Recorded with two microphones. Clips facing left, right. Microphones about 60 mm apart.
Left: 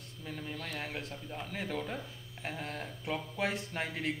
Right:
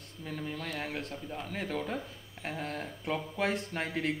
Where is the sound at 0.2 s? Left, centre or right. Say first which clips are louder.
Right 3 dB; centre.